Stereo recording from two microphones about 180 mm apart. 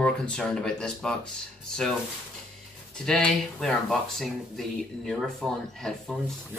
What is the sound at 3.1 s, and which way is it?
Speech, 5° left (ahead or behind).